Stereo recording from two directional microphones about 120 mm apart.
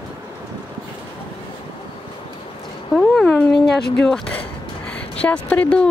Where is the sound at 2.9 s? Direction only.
5° left (ahead or behind).